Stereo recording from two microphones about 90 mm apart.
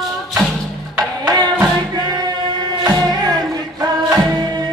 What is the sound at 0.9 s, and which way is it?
Music, 50° right (ahead or behind).